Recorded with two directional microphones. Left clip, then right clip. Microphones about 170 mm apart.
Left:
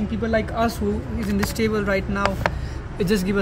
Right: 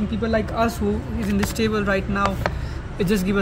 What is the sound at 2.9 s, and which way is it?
Speech, 5° right (ahead or behind).